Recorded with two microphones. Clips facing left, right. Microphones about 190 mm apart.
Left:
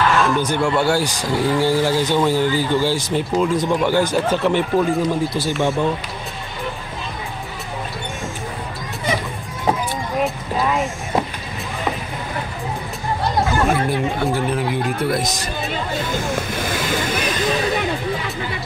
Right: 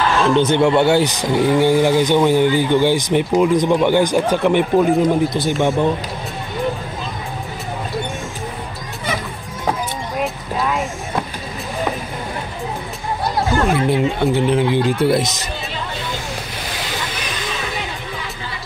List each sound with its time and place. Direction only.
0.1 s speech: 20° right (ahead or behind)
10.2 s a sound: centre (ahead or behind)
13.8 s speech: 25° right (ahead or behind)
15.7 s music: 50° left (ahead or behind)